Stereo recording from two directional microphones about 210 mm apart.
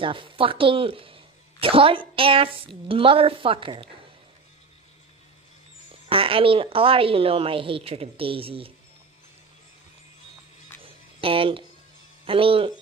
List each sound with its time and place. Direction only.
0.0 s speech: 25° right (ahead or behind)
6.0 s speech: 25° right (ahead or behind)
10.8 s a sound: 25° right (ahead or behind)
12.3 s speech: 25° right (ahead or behind)